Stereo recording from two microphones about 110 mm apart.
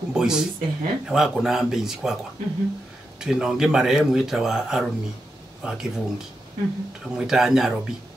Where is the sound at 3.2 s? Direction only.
5° right (ahead or behind).